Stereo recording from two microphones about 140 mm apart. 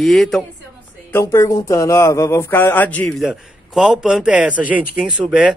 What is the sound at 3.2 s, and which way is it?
A man's voice, centre (ahead or behind).